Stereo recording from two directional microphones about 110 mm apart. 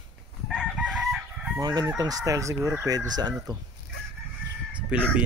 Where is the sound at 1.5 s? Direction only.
40° right (ahead or behind).